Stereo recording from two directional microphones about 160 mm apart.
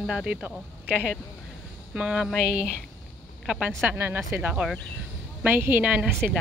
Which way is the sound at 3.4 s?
5° right (ahead or behind).